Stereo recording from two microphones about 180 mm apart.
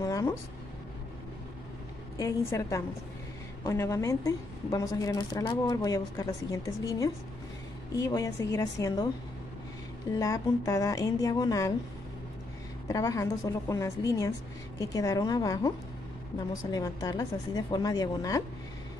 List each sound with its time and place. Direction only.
0.0 s a sound: 20° left (ahead or behind)
2.1 s a woman's voice: 20° left (ahead or behind)
10.1 s a woman's voice: 20° left (ahead or behind)
12.8 s a woman's voice: 20° left (ahead or behind)
16.7 s a woman's voice: 20° left (ahead or behind)